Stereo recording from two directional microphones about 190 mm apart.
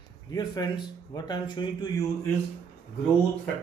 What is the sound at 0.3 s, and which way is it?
Speech, 20° left (ahead or behind).